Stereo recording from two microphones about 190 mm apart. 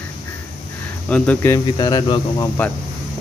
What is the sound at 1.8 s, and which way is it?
Speech, 25° left (ahead or behind).